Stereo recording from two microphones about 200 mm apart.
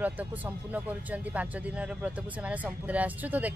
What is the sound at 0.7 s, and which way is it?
Speech, 5° right (ahead or behind).